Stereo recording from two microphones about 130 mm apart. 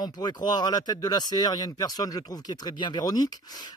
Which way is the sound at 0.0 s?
30° left (ahead or behind).